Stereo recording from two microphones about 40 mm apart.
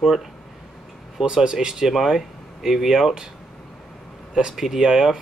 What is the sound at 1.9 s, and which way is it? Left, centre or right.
Speech, centre.